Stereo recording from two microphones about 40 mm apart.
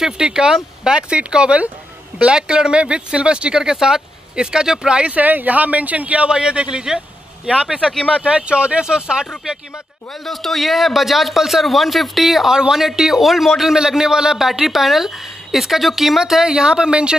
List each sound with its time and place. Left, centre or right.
0.0 s speech: centre
5.1 s speech: right
6.3 s speech: right
8.2 s speech: right
10.2 s speech: centre
12.5 s speech: centre
14.5 s speech: centre; by 17.2 s right